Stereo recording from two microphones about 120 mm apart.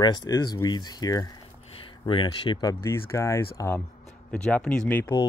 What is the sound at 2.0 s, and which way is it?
Speech, 40° left (ahead or behind).